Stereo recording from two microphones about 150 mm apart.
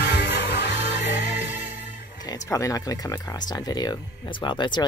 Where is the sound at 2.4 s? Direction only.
20° left (ahead or behind).